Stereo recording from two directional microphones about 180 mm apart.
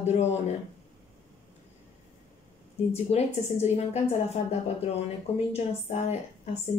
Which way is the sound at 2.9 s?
35° left (ahead or behind).